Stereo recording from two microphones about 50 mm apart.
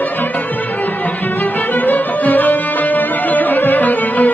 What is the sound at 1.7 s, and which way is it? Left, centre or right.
Music, left.